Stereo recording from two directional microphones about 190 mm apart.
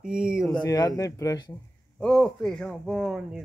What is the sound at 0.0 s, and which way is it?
Speech, 5° right (ahead or behind).